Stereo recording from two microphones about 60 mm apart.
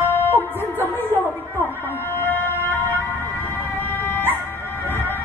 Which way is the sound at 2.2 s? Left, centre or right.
Left.